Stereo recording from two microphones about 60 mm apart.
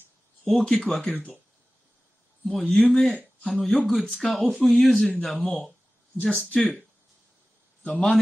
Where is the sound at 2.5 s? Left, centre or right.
Centre.